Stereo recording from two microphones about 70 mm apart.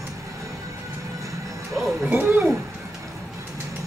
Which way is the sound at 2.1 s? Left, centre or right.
Right.